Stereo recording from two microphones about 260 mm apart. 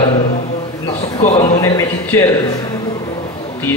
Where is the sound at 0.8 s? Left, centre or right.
Left.